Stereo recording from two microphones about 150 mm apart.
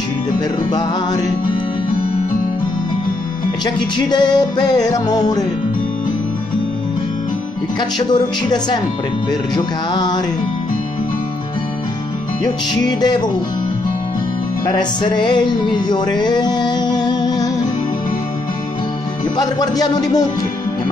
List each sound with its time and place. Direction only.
0.7 s music: 30° left (ahead or behind)
3.6 s music: 30° left (ahead or behind)
8.1 s music: 30° left (ahead or behind)
12.7 s music: 30° left (ahead or behind)
14.7 s music: 30° left (ahead or behind)
19.3 s music: 25° left (ahead or behind)